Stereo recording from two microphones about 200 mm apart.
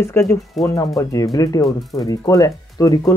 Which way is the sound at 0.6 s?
Centre (ahead or behind).